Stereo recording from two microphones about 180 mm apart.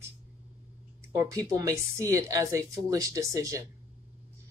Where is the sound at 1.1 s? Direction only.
15° right (ahead or behind).